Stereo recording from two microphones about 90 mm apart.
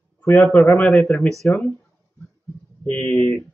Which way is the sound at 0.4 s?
20° left (ahead or behind).